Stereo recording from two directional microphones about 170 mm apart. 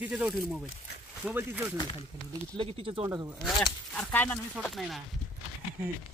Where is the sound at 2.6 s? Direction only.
35° right (ahead or behind).